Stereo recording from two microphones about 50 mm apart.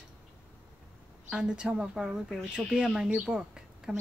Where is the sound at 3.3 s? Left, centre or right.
Centre.